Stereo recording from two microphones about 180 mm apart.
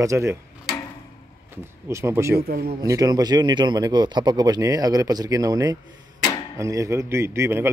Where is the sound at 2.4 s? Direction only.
60° right (ahead or behind).